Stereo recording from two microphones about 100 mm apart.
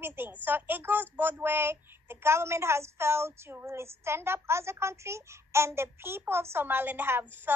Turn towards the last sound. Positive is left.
turn(degrees=-20)  # may be behind; listen again after turning